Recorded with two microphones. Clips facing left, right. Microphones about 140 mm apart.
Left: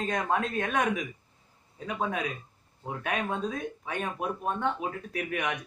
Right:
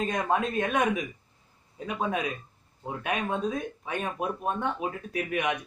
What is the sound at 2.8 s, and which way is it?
A man's voice, 5° right (ahead or behind).